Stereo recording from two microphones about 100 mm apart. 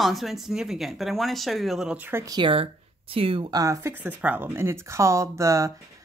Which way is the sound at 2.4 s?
65° right (ahead or behind).